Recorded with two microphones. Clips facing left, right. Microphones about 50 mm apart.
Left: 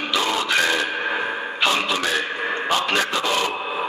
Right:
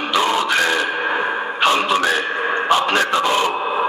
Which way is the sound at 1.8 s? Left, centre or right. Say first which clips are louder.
Right 5 dB; right.